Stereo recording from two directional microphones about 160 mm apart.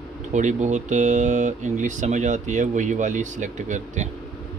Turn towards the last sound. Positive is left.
turn(degrees=-50)  # may be behind; listen again after turning